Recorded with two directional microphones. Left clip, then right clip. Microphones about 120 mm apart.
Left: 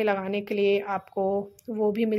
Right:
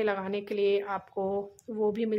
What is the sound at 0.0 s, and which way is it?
Speech, 30° left (ahead or behind).